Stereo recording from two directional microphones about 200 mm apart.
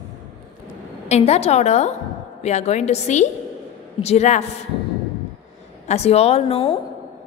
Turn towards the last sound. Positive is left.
turn(degrees=30)  # may be behind; listen again after turning